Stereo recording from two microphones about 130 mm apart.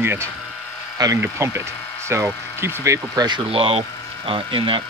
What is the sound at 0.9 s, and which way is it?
Speech, 30° right (ahead or behind).